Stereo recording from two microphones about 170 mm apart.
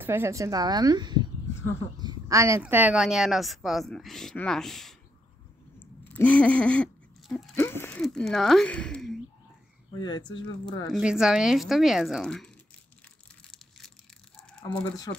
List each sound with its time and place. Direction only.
0.0 s speech: 15° right (ahead or behind); by 4.9 s centre (ahead or behind)
5.8 s dog: 10° left (ahead or behind)
7.5 s speech: 10° left (ahead or behind)
9.9 s speech: 25° left (ahead or behind)
10.9 s speech: 5° right (ahead or behind)
13.4 s a sound: centre (ahead or behind)
14.6 s speech: 25° left (ahead or behind)